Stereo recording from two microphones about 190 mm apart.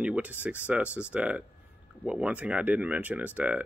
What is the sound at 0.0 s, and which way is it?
Speech, 5° right (ahead or behind).